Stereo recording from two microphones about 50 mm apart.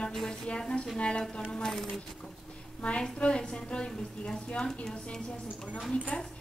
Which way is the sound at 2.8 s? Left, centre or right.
Left.